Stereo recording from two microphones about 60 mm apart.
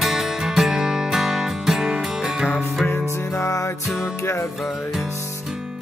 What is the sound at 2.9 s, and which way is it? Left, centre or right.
Music, left.